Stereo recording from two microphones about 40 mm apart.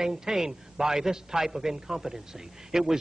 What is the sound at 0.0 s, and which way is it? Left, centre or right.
A man's voice, centre.